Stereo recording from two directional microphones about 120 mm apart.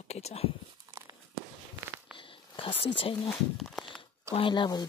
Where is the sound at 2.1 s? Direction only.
45° left (ahead or behind).